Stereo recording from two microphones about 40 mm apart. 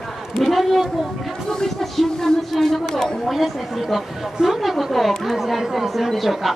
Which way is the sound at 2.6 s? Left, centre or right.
Centre.